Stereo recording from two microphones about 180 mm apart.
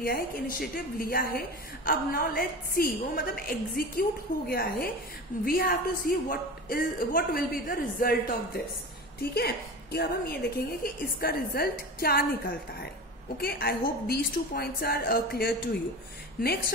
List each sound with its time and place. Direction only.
0.0 s a woman's voice: 55° left (ahead or behind)